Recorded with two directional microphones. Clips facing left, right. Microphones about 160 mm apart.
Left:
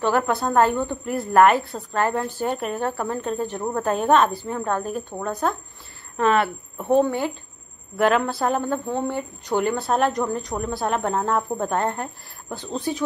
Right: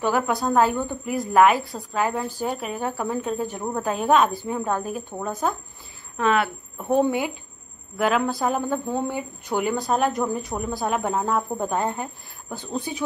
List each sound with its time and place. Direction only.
0.0 s a woman's voice: centre (ahead or behind)